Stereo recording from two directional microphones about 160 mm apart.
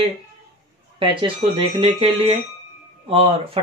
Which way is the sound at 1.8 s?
40° right (ahead or behind).